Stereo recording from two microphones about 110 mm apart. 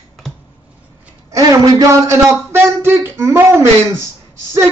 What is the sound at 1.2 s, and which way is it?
A man's voice, 30° right (ahead or behind).